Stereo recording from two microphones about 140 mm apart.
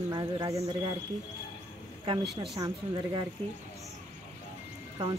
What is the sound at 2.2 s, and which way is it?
Speech, centre (ahead or behind).